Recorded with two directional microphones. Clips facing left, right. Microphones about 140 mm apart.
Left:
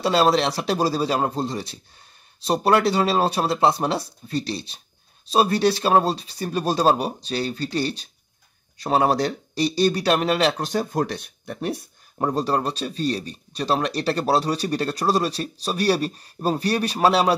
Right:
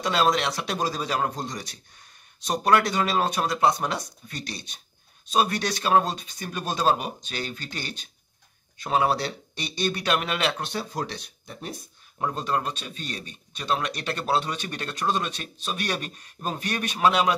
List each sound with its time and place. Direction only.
0.0 s speech: 30° left (ahead or behind); by 11.9 s 65° left (ahead or behind)
12.2 s speech: 35° left (ahead or behind)